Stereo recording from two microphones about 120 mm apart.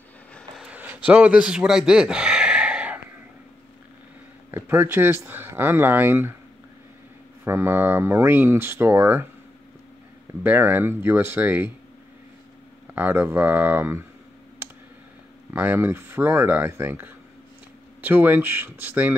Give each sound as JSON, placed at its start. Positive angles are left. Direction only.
{"t": 0.6, "sound": "a sound", "side_deg": -10}
{"t": 4.5, "sound": "speech", "side_deg": -20}
{"t": 7.4, "sound": "speech", "side_deg": -20}
{"t": 10.4, "sound": "speech", "side_deg": -15}
{"t": 12.9, "sound": "speech", "side_deg": -15}
{"t": 15.5, "sound": "speech", "side_deg": -15}